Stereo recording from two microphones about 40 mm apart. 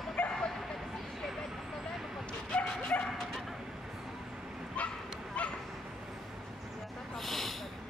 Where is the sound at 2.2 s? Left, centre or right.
Left.